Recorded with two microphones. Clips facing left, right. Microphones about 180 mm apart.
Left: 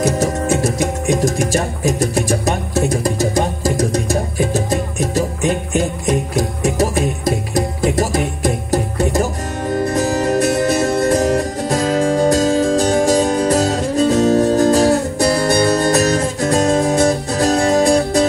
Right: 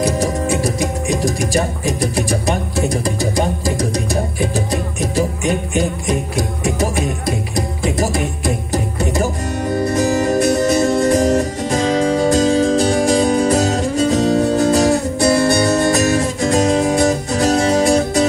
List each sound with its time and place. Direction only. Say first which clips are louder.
0.0 s music: left 1 dB; 45° left (ahead or behind)
6.8 s music: left 4 dB; 40° left (ahead or behind)
9.9 s music: right 1 dB; 40° left (ahead or behind)